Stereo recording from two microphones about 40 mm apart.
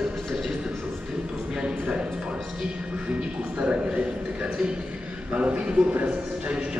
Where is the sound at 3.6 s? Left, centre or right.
Right.